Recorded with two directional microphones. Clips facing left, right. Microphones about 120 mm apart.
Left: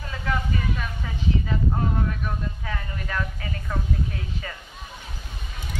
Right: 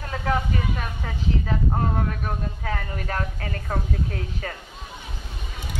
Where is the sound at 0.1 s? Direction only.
40° right (ahead or behind).